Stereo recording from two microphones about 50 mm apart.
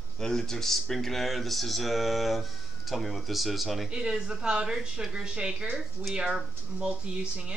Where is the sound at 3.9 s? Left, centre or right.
Centre.